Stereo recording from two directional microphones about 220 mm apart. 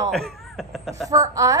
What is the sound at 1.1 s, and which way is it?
Speech, 15° right (ahead or behind).